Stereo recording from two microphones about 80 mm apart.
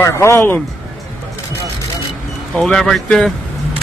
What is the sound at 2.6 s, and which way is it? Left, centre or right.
Speech, centre.